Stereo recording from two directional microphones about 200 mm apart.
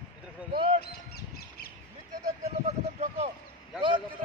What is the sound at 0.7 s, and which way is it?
Crow, 50° left (ahead or behind).